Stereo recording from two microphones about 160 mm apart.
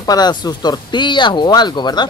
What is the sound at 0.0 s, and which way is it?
Speech, 25° left (ahead or behind).